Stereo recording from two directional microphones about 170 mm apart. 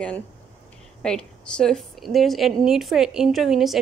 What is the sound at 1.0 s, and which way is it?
A woman's voice, 5° left (ahead or behind).